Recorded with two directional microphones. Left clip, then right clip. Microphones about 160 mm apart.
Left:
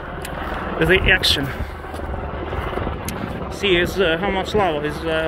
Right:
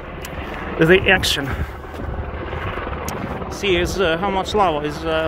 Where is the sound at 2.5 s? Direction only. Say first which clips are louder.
Left 1 dB; 40° left (ahead or behind).